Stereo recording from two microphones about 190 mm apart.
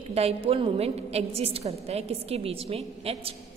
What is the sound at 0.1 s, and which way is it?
A woman's voice, 30° right (ahead or behind).